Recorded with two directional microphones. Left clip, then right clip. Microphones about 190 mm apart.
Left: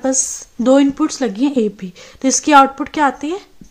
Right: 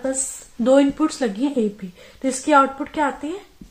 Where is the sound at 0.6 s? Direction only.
40° left (ahead or behind).